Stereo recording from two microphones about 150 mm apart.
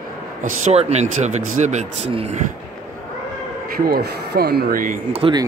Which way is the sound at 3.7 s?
90° right.